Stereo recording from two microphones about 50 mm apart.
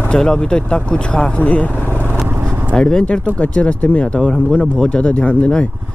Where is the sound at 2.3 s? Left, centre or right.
Right.